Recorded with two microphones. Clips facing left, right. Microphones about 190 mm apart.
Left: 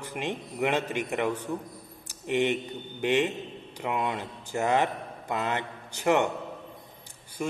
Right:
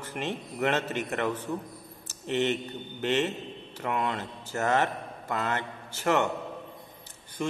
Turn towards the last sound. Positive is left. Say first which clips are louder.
# even
turn(degrees=10)  # may be behind; listen again after turning